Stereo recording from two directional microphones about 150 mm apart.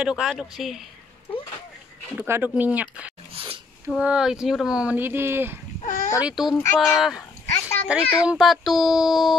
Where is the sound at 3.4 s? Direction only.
40° right (ahead or behind).